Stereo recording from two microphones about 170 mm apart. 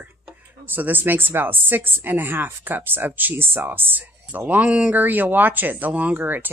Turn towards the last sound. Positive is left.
turn(degrees=-10)  # may be behind; listen again after turning